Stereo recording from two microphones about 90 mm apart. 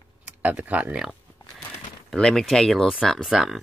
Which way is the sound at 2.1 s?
5° left (ahead or behind).